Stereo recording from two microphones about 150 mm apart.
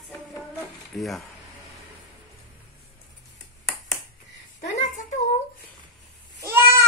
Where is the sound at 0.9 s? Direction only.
Centre (ahead or behind).